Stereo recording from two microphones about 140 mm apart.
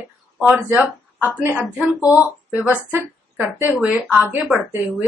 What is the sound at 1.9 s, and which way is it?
Speech, 20° left (ahead or behind).